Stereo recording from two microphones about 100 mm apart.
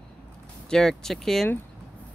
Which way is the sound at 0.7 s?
5° left (ahead or behind).